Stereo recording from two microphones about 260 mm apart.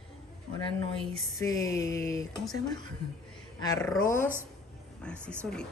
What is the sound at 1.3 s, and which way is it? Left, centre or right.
Speech, centre.